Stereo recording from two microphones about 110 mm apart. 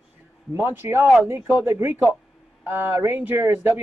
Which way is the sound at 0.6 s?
20° right (ahead or behind).